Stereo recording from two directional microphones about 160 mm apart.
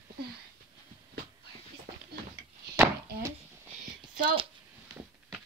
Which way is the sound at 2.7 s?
15° right (ahead or behind).